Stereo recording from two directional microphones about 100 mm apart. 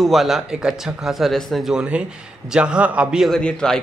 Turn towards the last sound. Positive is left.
turn(degrees=5)  # may be behind; listen again after turning